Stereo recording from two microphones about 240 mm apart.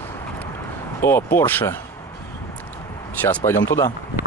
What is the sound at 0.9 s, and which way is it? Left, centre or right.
Speech, centre.